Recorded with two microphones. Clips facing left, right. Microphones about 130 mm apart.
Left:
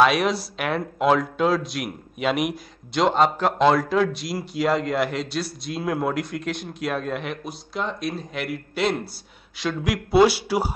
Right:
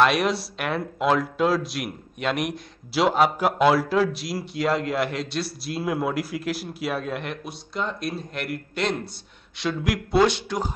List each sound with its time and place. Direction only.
0.0 s speech: centre (ahead or behind)